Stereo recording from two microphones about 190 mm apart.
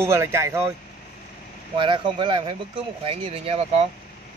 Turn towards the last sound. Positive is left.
turn(degrees=-30)  # may be behind; listen again after turning